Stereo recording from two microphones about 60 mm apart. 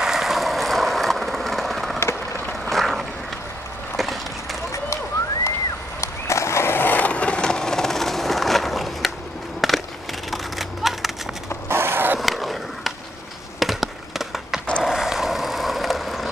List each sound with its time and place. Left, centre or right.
0.0 s vehicle: centre
3.9 s a sound: centre
5.9 s skateboard: left; by 9.1 s centre
9.6 s crushing: centre
10.3 s a sound: centre
11.7 s skateboard: right
12.2 s skateboard: centre
13.6 s a sound: centre
14.8 s vehicle: centre